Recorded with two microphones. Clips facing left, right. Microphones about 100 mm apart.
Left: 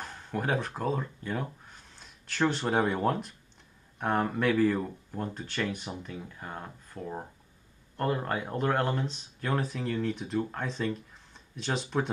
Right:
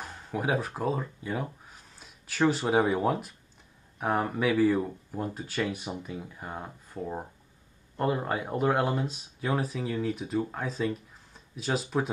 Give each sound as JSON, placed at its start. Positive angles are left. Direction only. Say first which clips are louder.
{"t": 0.0, "sound": "speech", "louder": "right 1 dB", "side_deg": -5}